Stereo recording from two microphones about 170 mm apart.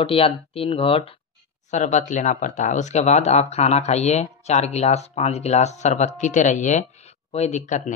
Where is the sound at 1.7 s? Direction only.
45° left (ahead or behind).